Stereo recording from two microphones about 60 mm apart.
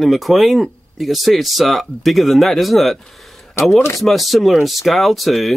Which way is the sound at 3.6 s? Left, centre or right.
Left.